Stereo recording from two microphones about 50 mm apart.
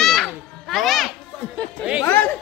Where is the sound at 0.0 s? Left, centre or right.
Centre.